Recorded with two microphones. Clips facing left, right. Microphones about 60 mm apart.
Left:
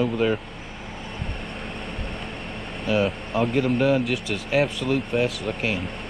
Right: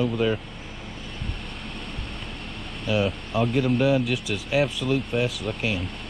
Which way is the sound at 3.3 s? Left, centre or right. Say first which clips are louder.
Even; left.